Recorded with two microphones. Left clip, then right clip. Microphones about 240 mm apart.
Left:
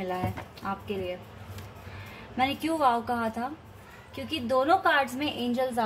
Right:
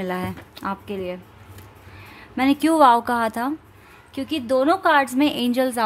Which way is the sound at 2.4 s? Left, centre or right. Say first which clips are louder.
Right 10 dB; right.